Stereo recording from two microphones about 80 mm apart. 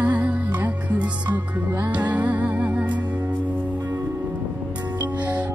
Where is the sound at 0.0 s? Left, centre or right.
Centre.